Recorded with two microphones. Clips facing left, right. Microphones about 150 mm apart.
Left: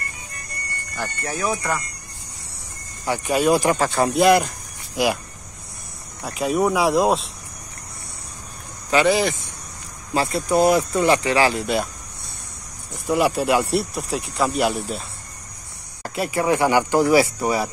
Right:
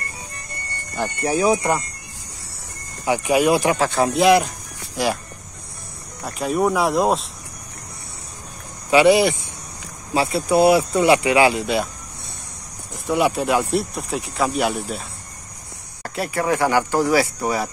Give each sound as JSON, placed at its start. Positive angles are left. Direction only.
{"t": 0.6, "sound": "music", "side_deg": -25}
{"t": 1.5, "sound": "speech", "side_deg": -15}
{"t": 3.1, "sound": "speech", "side_deg": -10}
{"t": 6.2, "sound": "speech", "side_deg": 0}
{"t": 8.9, "sound": "speech", "side_deg": -10}
{"t": 11.5, "sound": "speech", "side_deg": 0}
{"t": 13.0, "sound": "speech", "side_deg": 0}
{"t": 16.0, "sound": "speech", "side_deg": 15}
{"t": 17.4, "sound": "speech", "side_deg": 10}